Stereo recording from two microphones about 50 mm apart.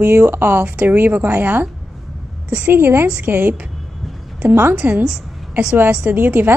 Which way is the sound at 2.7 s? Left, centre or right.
Right.